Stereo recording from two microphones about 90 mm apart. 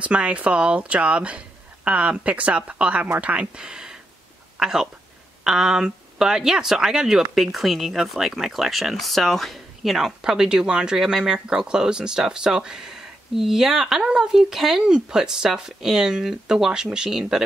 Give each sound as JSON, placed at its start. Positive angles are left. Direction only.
{"t": 0.0, "sound": "speech", "side_deg": -15}